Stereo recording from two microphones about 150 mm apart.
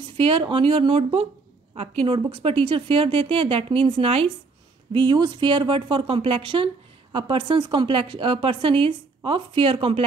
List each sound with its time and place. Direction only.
0.2 s speech: 35° right (ahead or behind)